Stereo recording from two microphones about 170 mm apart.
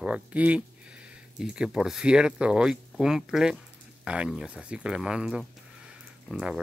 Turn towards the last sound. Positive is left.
turn(degrees=-5)  # may be behind; listen again after turning